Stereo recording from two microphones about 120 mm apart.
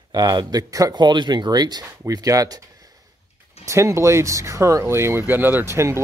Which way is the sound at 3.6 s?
25° right (ahead or behind).